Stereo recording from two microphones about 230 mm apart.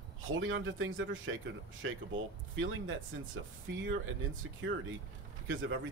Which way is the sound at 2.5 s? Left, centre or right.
Right.